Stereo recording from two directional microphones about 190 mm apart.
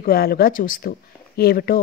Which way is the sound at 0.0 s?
50° left (ahead or behind).